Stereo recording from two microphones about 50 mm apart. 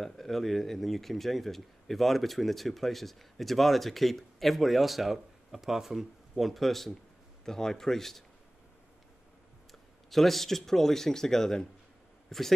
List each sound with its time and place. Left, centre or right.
0.0 s a man's voice: centre
9.7 s speech: centre